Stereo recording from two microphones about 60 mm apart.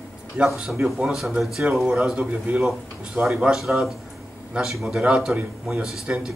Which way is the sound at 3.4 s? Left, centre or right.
Centre.